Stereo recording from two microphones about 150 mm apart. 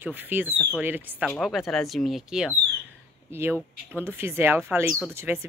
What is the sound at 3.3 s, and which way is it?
A woman's voice, 15° right (ahead or behind).